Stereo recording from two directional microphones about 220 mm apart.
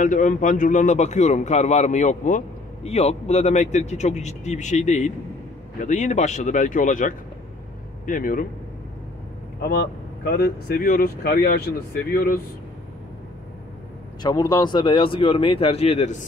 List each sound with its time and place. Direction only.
0.0 s a man's voice: 35° left (ahead or behind)
10.2 s speech: 45° left (ahead or behind)
14.2 s speech: 20° left (ahead or behind)